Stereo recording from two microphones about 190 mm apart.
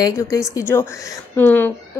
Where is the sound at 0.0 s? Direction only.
15° left (ahead or behind).